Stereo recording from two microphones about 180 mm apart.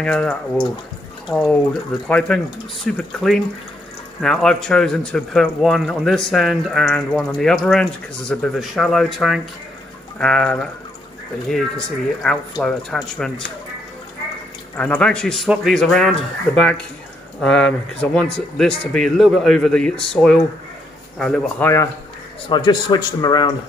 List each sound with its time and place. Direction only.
0.0 s speech: 5° left (ahead or behind)
14.8 s speech: 5° left (ahead or behind)
21.5 s speech: 15° left (ahead or behind)